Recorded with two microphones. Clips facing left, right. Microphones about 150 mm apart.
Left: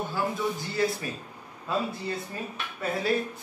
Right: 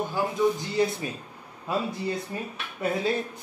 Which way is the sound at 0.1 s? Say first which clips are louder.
Right 4 dB; 20° right (ahead or behind).